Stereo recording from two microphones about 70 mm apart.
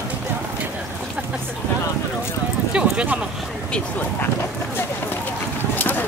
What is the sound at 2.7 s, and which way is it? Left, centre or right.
Clip-clop, centre.